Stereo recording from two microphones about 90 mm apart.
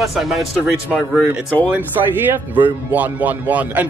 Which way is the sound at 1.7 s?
20° right (ahead or behind).